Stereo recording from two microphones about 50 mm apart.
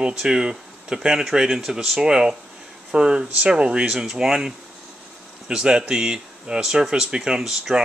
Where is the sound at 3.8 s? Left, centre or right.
Centre.